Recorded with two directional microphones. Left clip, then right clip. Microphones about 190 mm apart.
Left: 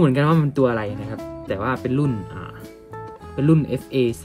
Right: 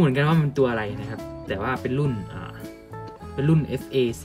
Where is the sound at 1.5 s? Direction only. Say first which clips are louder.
Left 3 dB; 15° left (ahead or behind).